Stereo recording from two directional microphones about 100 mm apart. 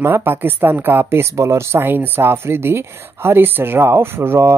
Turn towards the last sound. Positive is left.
turn(degrees=-25)  # may be behind; listen again after turning